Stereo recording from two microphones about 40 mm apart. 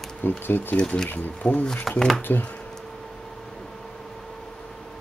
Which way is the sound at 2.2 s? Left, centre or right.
Left.